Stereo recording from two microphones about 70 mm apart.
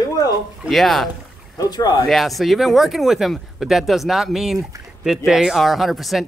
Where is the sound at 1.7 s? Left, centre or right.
Left.